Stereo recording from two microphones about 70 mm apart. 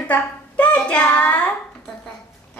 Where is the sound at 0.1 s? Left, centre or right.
Centre.